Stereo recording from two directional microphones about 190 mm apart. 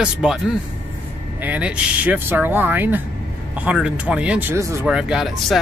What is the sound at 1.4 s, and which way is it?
Speech, 10° right (ahead or behind).